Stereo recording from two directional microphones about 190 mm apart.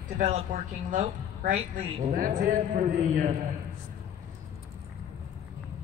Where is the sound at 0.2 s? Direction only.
40° right (ahead or behind).